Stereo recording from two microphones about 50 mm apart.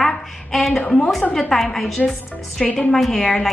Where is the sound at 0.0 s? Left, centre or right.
Centre.